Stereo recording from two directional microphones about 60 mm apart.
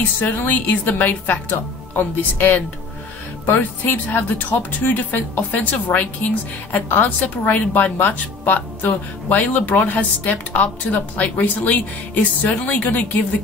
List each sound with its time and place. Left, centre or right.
0.0 s a woman's voice: left